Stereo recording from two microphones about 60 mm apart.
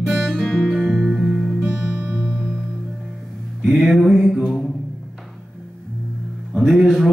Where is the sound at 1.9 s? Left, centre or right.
Right.